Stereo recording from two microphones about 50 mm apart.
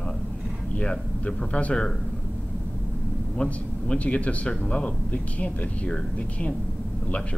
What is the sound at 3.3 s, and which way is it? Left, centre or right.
A man's voice, left.